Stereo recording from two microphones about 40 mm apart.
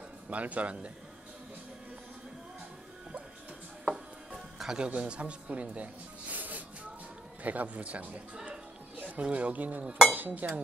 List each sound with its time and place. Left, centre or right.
0.3 s speech: right
3.9 s music: centre
4.8 s speech: right